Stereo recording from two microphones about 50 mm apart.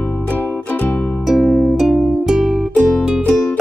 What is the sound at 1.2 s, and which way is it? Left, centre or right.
Music, centre.